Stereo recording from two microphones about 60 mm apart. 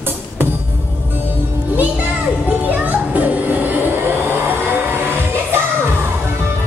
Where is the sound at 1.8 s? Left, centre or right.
Right.